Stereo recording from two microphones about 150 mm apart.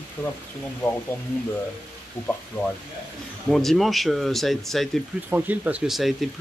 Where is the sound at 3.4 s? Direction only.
Centre (ahead or behind).